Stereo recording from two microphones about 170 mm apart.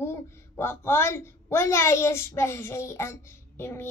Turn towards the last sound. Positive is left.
turn(degrees=15)  # may be behind; listen again after turning